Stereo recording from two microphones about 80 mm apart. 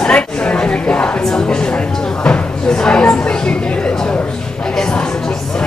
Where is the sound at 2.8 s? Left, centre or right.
Centre.